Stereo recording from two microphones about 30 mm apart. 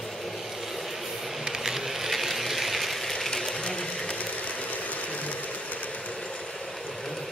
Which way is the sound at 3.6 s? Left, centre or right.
Left.